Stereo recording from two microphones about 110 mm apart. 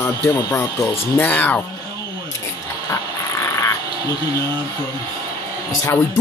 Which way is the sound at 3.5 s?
30° left (ahead or behind).